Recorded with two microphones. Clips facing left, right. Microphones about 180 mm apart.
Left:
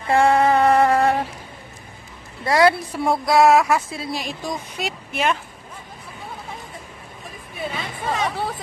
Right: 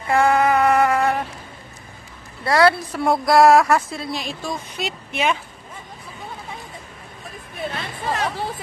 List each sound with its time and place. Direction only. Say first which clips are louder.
0.1 s mantra: left 1 dB; 30° left (ahead or behind)
2.4 s a woman's voice: even; 15° left (ahead or behind)
3.1 s speech: right 2 dB; centre (ahead or behind)
7.6 s a sound: even; centre (ahead or behind)